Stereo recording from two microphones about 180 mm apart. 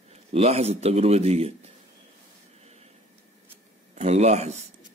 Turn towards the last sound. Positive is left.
turn(degrees=-40)  # may be behind; listen again after turning